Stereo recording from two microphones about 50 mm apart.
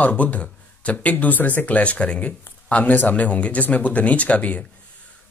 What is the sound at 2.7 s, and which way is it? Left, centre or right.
Speech, left.